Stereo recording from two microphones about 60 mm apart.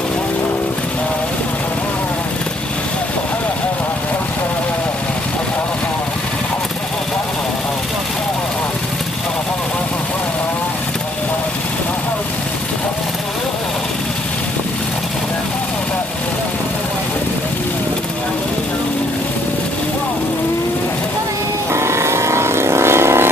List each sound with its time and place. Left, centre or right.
21.7 s vehicle: right